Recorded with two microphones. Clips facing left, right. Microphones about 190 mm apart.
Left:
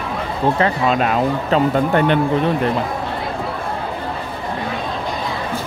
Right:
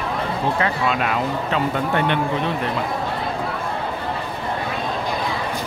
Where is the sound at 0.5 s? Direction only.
35° left (ahead or behind).